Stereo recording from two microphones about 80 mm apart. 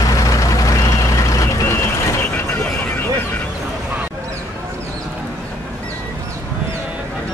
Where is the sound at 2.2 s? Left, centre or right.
Left.